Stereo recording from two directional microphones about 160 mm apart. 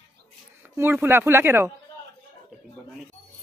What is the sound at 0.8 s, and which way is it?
Speech, 15° right (ahead or behind).